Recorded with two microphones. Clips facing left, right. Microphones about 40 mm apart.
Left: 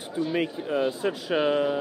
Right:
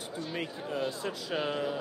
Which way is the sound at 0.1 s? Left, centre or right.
Left.